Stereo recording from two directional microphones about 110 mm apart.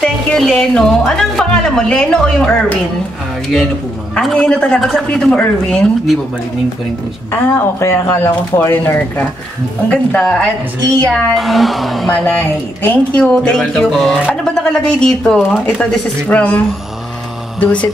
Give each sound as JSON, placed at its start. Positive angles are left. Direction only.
{"t": 0.0, "sound": "speech", "side_deg": 5}
{"t": 4.2, "sound": "speech", "side_deg": 5}
{"t": 7.2, "sound": "speech", "side_deg": 20}
{"t": 11.1, "sound": "speech", "side_deg": 0}
{"t": 12.1, "sound": "speech", "side_deg": 15}